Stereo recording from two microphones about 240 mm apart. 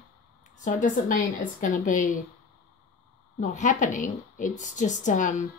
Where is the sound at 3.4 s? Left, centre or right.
Left.